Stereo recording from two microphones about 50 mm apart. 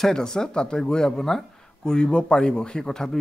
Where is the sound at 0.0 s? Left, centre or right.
Centre.